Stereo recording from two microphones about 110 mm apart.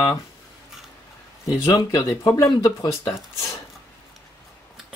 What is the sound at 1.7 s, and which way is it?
Speech, 40° left (ahead or behind).